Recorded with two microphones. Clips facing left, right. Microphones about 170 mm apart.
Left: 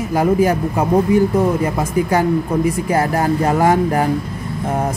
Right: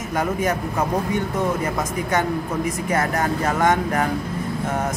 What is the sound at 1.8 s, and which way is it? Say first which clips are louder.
Speech: left 6 dB; 30° left (ahead or behind).